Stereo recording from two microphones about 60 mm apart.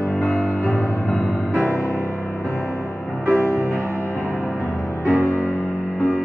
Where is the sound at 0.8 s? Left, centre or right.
Left.